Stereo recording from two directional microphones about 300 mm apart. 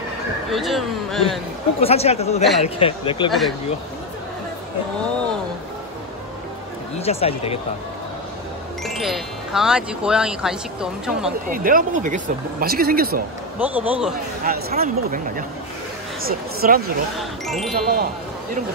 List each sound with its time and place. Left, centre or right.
0.5 s speech: centre
1.8 s speech: centre
3.3 s speech: centre
7.0 s speech: centre
8.8 s speech: centre
11.5 s speech: right
13.6 s speech: centre
14.4 s speech: right
17.2 s speech: centre
17.7 s speech: right